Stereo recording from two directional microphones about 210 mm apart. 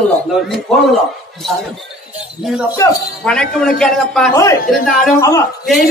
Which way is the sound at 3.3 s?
Centre (ahead or behind).